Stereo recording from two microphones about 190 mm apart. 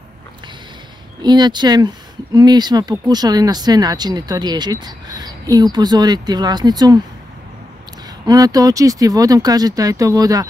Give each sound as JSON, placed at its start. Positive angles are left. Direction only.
{"t": 1.2, "sound": "speech", "side_deg": -20}
{"t": 8.3, "sound": "speech", "side_deg": -20}